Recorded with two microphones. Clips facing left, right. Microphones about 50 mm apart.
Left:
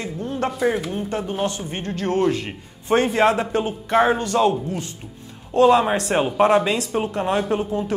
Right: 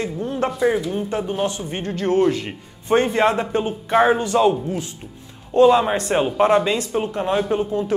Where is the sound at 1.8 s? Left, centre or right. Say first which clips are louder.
Right 3 dB; right.